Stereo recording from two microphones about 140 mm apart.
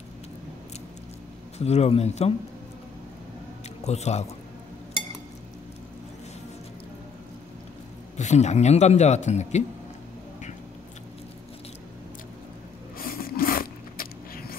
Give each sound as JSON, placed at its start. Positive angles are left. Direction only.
{"t": 1.6, "sound": "a man's voice", "side_deg": 50}
{"t": 3.8, "sound": "a man's voice", "side_deg": 50}
{"t": 8.2, "sound": "a man's voice", "side_deg": 55}
{"t": 13.0, "sound": "a sound", "side_deg": 90}